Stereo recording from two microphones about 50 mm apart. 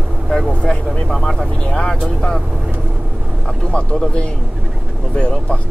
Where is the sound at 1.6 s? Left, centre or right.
Centre.